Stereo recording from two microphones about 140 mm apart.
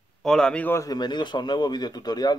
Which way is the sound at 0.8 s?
30° left (ahead or behind).